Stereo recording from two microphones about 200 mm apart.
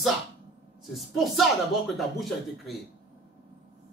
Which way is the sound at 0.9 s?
Centre (ahead or behind).